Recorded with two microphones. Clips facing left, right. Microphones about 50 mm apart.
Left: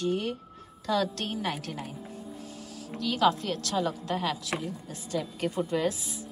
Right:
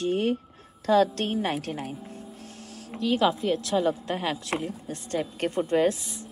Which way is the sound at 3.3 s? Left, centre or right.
Centre.